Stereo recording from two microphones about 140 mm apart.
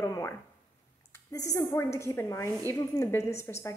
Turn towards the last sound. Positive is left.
turn(degrees=20)  # may be behind; listen again after turning